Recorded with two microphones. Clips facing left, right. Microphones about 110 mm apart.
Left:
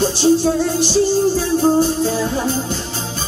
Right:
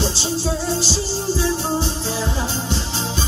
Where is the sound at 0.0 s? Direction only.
55° left (ahead or behind).